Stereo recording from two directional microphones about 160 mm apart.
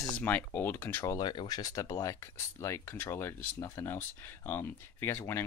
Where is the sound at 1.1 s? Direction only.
25° left (ahead or behind).